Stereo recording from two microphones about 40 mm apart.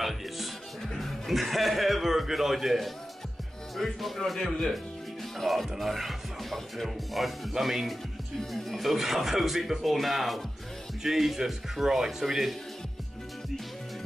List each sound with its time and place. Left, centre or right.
0.9 s speech: centre
8.4 s speech: centre
8.7 s speech: centre